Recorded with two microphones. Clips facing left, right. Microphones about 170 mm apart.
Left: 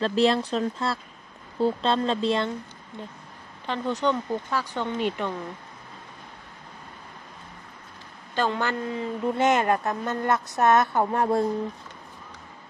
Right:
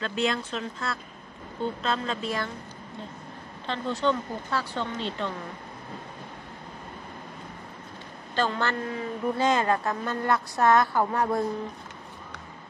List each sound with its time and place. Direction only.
0.0 s speech: 35° left (ahead or behind)
3.6 s speech: 15° left (ahead or behind)
8.4 s speech: 15° left (ahead or behind)